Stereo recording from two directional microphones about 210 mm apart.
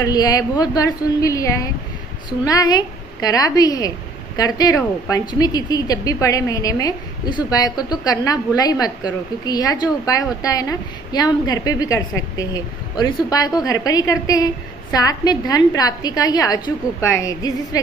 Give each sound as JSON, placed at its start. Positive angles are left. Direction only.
{"t": 0.0, "sound": "a woman's voice", "side_deg": 15}